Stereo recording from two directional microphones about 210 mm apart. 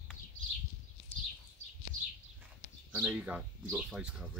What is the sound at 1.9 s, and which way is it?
Bird, 40° right (ahead or behind).